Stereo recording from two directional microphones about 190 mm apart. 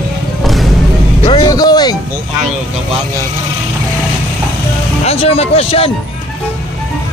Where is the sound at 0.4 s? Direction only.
Centre (ahead or behind).